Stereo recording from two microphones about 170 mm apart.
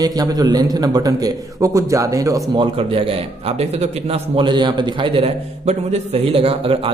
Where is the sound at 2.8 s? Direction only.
35° right (ahead or behind).